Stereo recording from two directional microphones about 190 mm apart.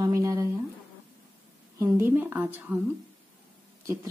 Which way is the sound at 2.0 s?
10° right (ahead or behind).